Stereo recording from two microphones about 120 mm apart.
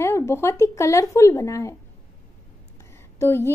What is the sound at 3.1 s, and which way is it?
Speech, 20° left (ahead or behind).